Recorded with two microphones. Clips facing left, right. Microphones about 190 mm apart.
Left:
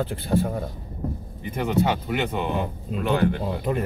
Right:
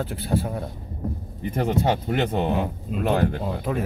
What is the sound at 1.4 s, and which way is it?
Speech, 40° right (ahead or behind).